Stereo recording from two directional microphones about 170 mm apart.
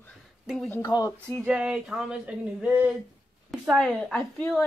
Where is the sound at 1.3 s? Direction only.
5° right (ahead or behind).